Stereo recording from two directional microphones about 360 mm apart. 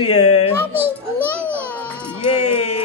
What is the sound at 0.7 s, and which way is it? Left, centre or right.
Speech, centre.